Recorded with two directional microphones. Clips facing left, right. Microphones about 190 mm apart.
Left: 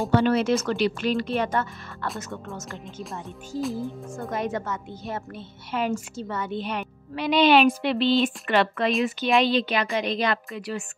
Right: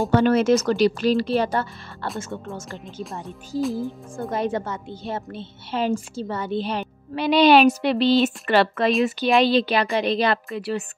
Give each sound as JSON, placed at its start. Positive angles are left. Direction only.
{"t": 0.1, "sound": "a woman's voice", "side_deg": -45}
{"t": 3.6, "sound": "speech", "side_deg": 0}
{"t": 4.2, "sound": "a woman's voice", "side_deg": -30}